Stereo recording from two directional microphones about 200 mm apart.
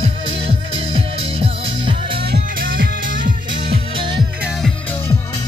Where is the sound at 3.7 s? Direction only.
25° right (ahead or behind).